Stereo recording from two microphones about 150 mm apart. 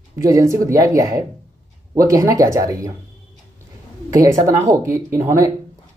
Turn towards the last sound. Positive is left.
turn(degrees=-20)  # may be behind; listen again after turning